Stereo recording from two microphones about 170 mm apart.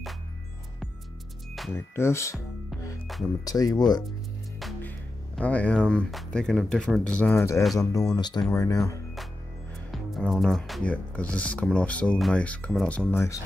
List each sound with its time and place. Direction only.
1.7 s speech: 15° left (ahead or behind)
3.4 s speech: 20° left (ahead or behind)
5.3 s speech: 10° left (ahead or behind)
9.8 s speech: centre (ahead or behind)